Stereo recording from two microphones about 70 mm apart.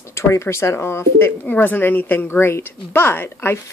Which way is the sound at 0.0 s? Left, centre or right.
Left.